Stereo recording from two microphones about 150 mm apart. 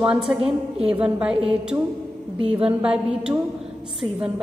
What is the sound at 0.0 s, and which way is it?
Speech, 5° right (ahead or behind).